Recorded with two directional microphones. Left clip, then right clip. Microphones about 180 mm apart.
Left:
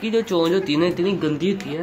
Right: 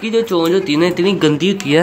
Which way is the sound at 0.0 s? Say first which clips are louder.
Right 5 dB; 5° right (ahead or behind).